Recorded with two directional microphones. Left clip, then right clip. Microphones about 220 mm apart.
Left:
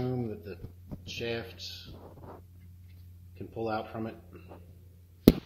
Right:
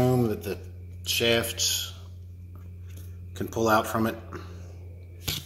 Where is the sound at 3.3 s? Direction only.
50° right (ahead or behind).